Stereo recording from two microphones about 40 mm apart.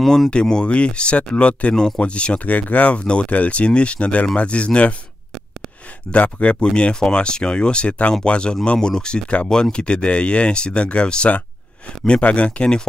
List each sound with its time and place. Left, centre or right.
0.0 s speech: centre
0.3 s speech: left
6.1 s speech: left